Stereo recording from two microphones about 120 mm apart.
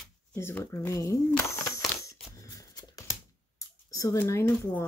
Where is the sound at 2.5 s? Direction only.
25° left (ahead or behind).